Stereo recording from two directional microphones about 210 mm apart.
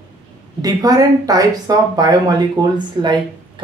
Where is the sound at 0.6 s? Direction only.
15° right (ahead or behind).